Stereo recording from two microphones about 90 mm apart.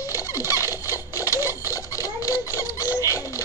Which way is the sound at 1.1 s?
40° left (ahead or behind).